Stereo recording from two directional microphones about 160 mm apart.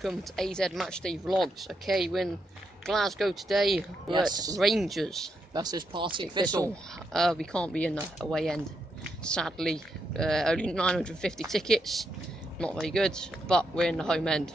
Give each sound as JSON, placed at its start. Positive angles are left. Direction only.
{"t": 0.0, "sound": "speech", "side_deg": 0}
{"t": 4.1, "sound": "speech", "side_deg": -25}
{"t": 4.6, "sound": "speech", "side_deg": 0}
{"t": 5.5, "sound": "speech", "side_deg": -25}
{"t": 6.7, "sound": "speech", "side_deg": 5}